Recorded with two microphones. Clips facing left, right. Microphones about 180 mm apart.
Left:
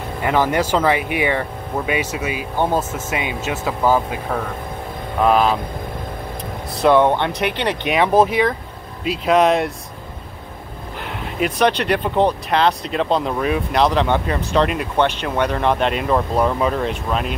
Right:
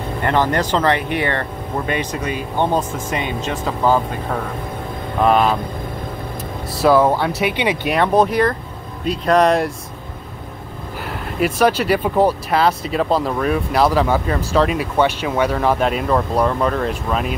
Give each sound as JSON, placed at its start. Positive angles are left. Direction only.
{"t": 0.2, "sound": "speech", "side_deg": 10}
{"t": 6.8, "sound": "speech", "side_deg": 0}
{"t": 11.1, "sound": "speech", "side_deg": 0}